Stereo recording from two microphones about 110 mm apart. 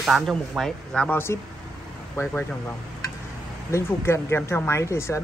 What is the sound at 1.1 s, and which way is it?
Speech, 20° left (ahead or behind).